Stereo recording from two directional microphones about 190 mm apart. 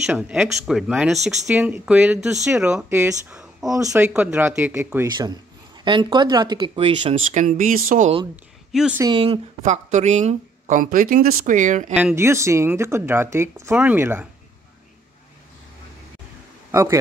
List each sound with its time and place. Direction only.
0.0 s speech: 5° right (ahead or behind)
5.9 s speech: 25° right (ahead or behind)
7.3 s speech: 45° right (ahead or behind)
8.7 s speech: 5° right (ahead or behind)
9.0 s a woman's voice: 25° right (ahead or behind)
11.9 s speech: 5° right (ahead or behind)
16.7 s speech: 15° right (ahead or behind)